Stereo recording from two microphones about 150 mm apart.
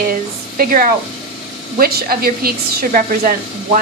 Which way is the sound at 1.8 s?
85° right.